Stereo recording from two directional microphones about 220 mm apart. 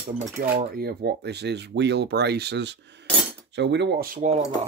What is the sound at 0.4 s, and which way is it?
Speech, 40° right (ahead or behind).